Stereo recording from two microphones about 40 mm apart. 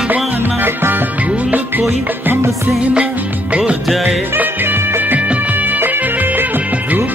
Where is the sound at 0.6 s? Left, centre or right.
Right.